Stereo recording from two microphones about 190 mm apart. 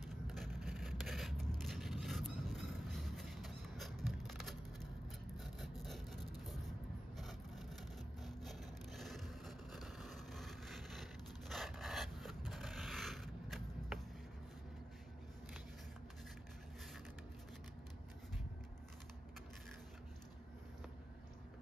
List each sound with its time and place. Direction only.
0.7 s scrape: centre (ahead or behind)
5.4 s wood: centre (ahead or behind)
7.2 s vehicle: centre (ahead or behind)